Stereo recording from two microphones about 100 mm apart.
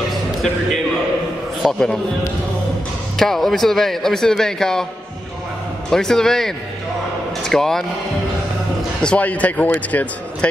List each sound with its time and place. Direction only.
1.6 s speech: 5° left (ahead or behind)
3.2 s speech: centre (ahead or behind)
5.9 s speech: 5° left (ahead or behind)
9.0 s a man's voice: 15° left (ahead or behind)